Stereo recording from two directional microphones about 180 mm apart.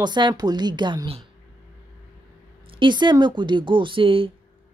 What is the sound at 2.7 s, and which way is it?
A woman's voice, 25° right (ahead or behind).